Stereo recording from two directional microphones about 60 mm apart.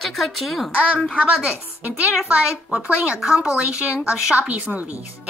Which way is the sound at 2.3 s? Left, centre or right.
Centre.